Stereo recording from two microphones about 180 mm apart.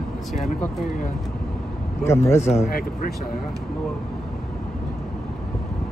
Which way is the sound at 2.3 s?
40° left (ahead or behind).